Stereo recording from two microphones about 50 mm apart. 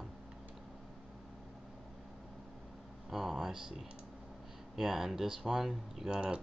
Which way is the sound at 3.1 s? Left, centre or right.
Centre.